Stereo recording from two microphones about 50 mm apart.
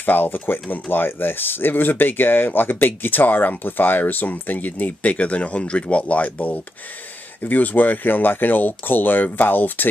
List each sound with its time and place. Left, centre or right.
0.0 s speech: left